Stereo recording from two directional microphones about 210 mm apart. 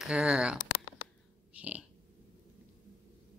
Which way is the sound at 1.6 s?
5° right (ahead or behind).